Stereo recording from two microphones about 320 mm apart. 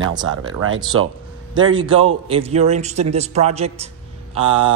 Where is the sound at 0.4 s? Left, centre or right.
Right.